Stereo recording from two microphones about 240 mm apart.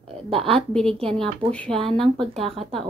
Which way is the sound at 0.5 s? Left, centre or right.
Centre.